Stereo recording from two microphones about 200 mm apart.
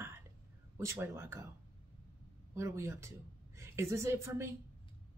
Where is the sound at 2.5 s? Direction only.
15° right (ahead or behind).